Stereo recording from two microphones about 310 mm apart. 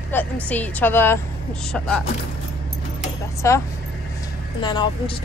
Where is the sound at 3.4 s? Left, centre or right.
Centre.